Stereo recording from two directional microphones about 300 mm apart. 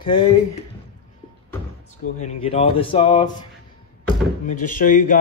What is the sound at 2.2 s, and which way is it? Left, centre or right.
Speech, centre.